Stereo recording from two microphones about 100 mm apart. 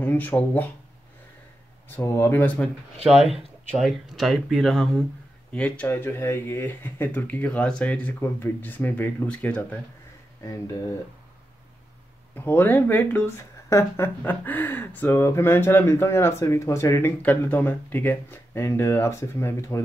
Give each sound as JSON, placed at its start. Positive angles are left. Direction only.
{"t": 0.0, "sound": "speech", "side_deg": 20}
{"t": 1.9, "sound": "speech", "side_deg": 25}
{"t": 3.3, "sound": "speech", "side_deg": 0}
{"t": 5.5, "sound": "speech", "side_deg": 15}
{"t": 10.4, "sound": "speech", "side_deg": 35}
{"t": 12.4, "sound": "speech", "side_deg": 20}
{"t": 13.4, "sound": "speech", "side_deg": 30}
{"t": 17.2, "sound": "speech", "side_deg": 15}